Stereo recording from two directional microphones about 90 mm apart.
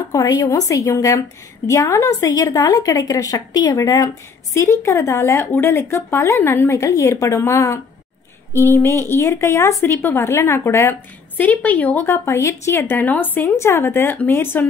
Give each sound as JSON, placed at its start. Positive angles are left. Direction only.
{"t": 0.1, "sound": "a woman's voice", "side_deg": 40}
{"t": 11.3, "sound": "speech", "side_deg": 20}